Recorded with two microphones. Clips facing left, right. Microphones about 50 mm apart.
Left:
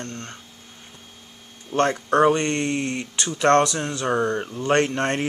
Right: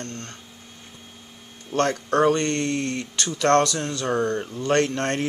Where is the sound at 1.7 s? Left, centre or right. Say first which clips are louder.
Left 2 dB; centre.